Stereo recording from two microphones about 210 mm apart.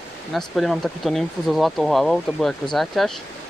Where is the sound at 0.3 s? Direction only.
Centre (ahead or behind).